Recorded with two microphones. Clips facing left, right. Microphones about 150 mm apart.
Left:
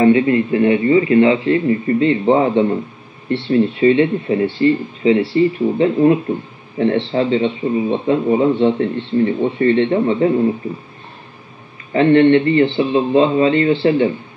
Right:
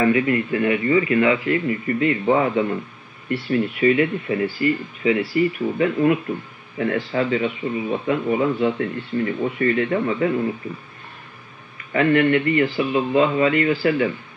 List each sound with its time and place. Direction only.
0.0 s speech: 25° left (ahead or behind)
11.9 s speech: 30° left (ahead or behind)